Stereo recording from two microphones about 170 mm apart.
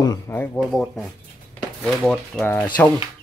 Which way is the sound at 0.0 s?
20° left (ahead or behind).